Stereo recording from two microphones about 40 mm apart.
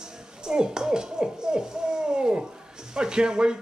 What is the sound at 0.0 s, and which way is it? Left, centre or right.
A man's voice, centre.